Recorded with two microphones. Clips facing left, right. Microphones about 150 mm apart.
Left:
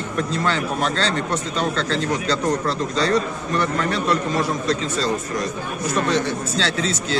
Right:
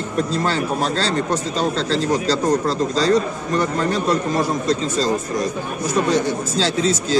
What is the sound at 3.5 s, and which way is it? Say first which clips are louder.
A man's voice: right 2 dB; 35° right (ahead or behind).